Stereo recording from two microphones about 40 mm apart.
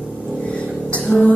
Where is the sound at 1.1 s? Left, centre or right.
Centre.